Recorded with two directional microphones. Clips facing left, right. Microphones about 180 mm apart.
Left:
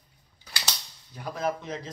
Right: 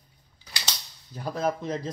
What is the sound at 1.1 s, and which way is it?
Speech, 35° right (ahead or behind).